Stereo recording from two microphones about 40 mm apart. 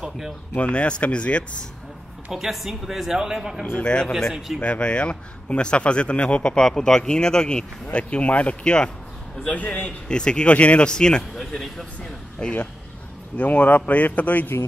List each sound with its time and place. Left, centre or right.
0.6 s speech: left
2.3 s speech: centre
3.8 s speech: left
4.3 s speech: centre
4.6 s speech: left
10.0 s speech: left
10.5 s speech: left
10.9 s speech: centre
13.4 s speech: left